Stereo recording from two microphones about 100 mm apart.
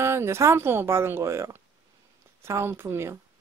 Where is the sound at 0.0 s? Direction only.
25° right (ahead or behind).